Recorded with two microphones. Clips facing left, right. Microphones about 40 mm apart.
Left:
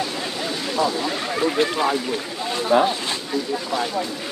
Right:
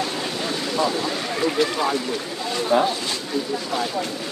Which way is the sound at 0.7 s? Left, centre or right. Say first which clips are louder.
Left 1 dB; centre.